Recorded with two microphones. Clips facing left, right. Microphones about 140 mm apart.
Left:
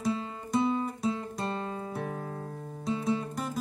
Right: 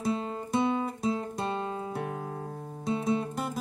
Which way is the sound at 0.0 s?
30° right (ahead or behind).